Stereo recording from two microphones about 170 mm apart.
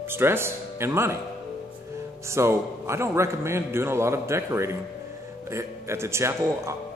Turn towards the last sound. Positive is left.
turn(degrees=-15)  # may be behind; listen again after turning